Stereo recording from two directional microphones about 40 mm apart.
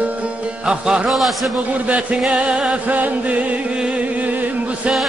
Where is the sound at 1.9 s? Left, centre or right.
Right.